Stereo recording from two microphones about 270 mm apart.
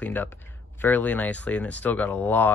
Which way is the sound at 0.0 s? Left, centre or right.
Centre.